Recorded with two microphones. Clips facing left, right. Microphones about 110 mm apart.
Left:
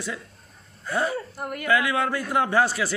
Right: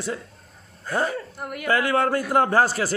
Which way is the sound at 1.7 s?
40° right (ahead or behind).